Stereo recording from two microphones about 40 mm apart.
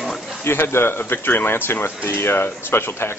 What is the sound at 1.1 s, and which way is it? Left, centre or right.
Speech, left.